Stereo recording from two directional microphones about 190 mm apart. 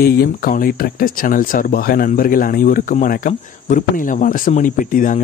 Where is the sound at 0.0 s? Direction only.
50° left (ahead or behind).